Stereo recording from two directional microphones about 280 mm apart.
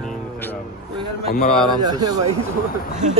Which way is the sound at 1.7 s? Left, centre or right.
Centre.